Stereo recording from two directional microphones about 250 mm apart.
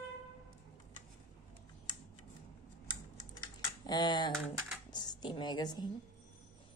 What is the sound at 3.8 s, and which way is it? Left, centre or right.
Typing, centre.